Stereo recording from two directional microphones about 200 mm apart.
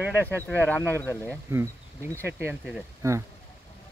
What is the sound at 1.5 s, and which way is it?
Speech, 10° right (ahead or behind).